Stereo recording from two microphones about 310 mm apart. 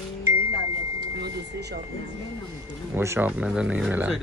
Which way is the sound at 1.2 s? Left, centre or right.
Right.